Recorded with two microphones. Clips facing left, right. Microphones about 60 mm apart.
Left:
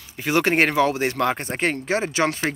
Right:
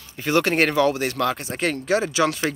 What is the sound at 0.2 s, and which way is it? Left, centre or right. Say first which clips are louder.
Speech: even; centre.